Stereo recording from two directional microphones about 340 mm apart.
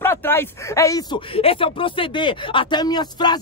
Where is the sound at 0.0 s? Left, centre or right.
Centre.